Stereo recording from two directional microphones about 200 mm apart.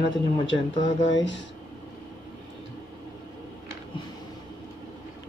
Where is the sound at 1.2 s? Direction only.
65° left (ahead or behind).